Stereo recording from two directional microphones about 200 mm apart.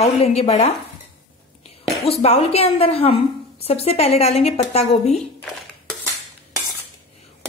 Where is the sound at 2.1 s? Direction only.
30° left (ahead or behind).